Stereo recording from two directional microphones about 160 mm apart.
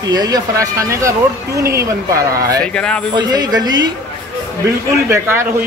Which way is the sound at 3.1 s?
25° right (ahead or behind).